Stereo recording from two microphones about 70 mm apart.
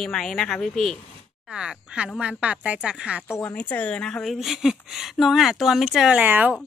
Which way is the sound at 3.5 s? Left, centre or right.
Left.